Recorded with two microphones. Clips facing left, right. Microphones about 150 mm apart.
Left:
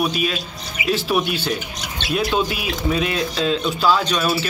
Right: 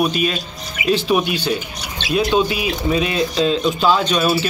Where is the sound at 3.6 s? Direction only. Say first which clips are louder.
Right 2 dB; 25° right (ahead or behind).